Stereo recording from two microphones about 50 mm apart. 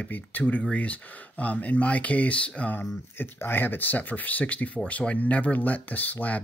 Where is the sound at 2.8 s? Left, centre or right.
Left.